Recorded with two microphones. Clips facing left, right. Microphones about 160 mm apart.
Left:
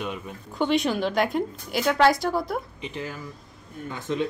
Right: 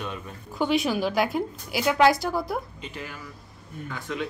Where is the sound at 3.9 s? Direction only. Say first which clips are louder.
Left 4 dB; 25° left (ahead or behind).